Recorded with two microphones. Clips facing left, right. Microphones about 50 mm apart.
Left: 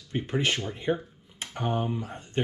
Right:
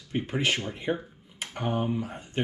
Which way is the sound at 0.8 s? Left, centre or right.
Right.